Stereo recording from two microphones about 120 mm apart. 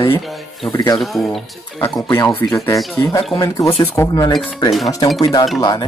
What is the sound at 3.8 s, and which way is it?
Speech, 30° left (ahead or behind).